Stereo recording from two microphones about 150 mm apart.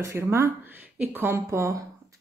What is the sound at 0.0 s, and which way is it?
Speech, 15° right (ahead or behind).